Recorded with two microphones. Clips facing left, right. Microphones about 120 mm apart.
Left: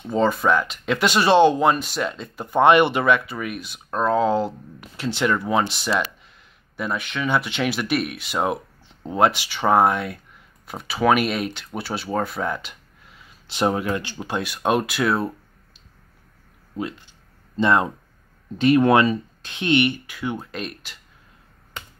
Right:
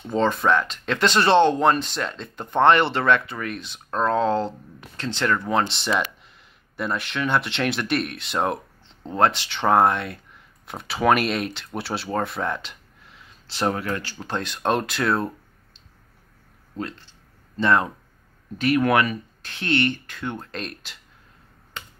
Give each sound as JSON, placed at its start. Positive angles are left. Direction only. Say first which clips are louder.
{"t": 0.0, "sound": "speech", "louder": "left 1 dB", "side_deg": 5}
{"t": 13.5, "sound": "speech", "louder": "left 3 dB", "side_deg": 20}
{"t": 16.7, "sound": "speech", "louder": "left 3 dB", "side_deg": 10}